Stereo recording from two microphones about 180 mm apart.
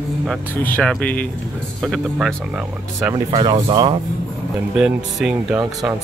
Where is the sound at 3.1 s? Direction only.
25° right (ahead or behind).